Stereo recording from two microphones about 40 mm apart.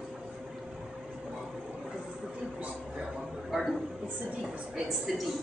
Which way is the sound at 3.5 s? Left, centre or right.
Centre.